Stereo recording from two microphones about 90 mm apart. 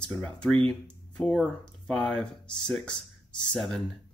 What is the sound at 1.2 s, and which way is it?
Speech, 15° left (ahead or behind).